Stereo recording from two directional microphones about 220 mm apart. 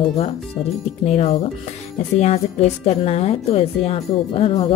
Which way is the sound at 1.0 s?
30° left (ahead or behind).